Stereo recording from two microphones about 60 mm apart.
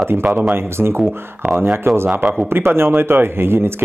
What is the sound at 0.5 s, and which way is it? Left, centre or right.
Speech, right.